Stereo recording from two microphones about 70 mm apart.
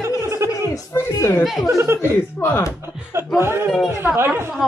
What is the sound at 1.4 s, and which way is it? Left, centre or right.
Speech, centre.